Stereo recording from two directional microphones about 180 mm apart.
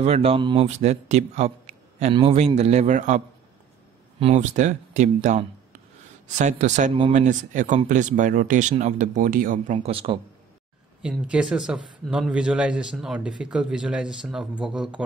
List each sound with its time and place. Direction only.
0.0 s speech: 35° right (ahead or behind)
0.7 s speech: 40° right (ahead or behind)
4.2 s speech: 35° right (ahead or behind)
9.8 s speech: 30° right (ahead or behind)
11.0 s speech: 5° right (ahead or behind)